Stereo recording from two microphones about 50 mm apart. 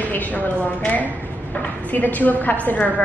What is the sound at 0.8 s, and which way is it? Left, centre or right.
A woman's voice, left.